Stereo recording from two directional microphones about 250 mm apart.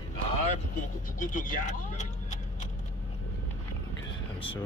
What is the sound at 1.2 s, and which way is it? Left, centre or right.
Speech, left.